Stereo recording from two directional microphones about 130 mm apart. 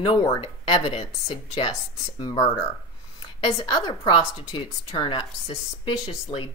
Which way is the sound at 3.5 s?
35° left (ahead or behind).